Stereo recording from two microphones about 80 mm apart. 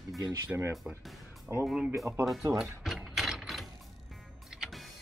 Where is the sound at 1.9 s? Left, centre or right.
Right.